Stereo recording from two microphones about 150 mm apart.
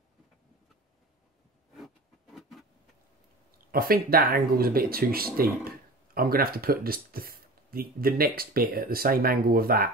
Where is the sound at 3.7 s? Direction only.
80° right.